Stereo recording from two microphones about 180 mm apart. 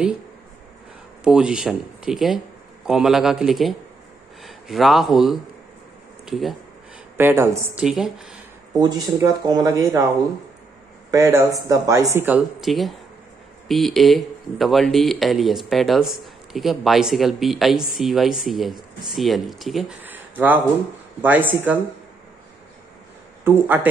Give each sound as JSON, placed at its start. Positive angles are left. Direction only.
{"t": 1.2, "sound": "speech", "side_deg": -5}
{"t": 7.2, "sound": "speech", "side_deg": -15}
{"t": 7.8, "sound": "speech", "side_deg": 0}
{"t": 8.7, "sound": "speech", "side_deg": -20}
{"t": 11.1, "sound": "speech", "side_deg": -15}
{"t": 23.4, "sound": "speech", "side_deg": -10}